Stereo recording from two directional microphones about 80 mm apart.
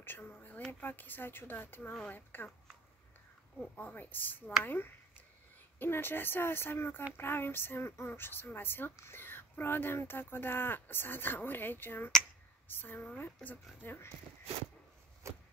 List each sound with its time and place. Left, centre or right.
0.0 s a sound: left
0.7 s speech: left
3.7 s speech: left
15.2 s wood: right